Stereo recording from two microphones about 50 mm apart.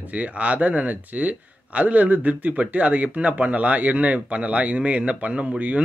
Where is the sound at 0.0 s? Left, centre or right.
Right.